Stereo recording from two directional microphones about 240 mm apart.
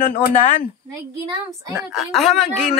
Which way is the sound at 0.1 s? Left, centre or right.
Left.